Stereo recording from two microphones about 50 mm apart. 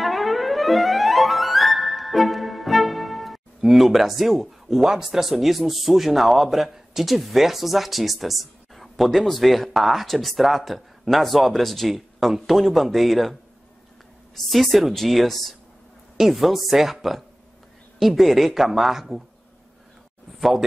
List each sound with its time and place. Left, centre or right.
0.0 s music: centre
11.9 s speech: centre
20.3 s speech: centre